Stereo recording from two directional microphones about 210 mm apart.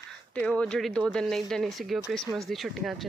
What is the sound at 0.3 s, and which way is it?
Speech, 5° left (ahead or behind).